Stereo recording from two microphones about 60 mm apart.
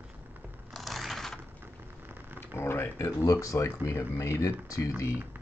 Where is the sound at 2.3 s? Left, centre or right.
Left.